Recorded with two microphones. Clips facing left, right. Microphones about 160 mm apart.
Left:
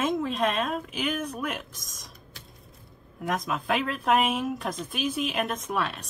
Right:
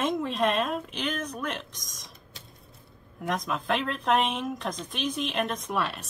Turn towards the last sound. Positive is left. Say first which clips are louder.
# even
turn(degrees=0)  # may be behind; listen again after turning